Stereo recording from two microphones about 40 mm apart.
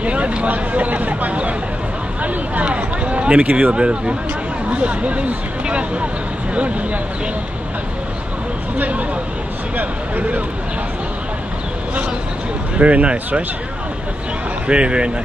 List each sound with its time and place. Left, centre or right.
0.0 s a sound: right
4.6 s speech: right
8.7 s speech: right
12.7 s speech: right
14.7 s speech: right